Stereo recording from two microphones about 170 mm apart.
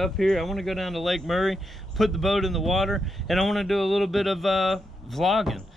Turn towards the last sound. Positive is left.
turn(degrees=0)  # may be behind; listen again after turning